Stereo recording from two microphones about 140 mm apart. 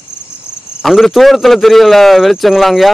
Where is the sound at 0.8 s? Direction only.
Centre (ahead or behind).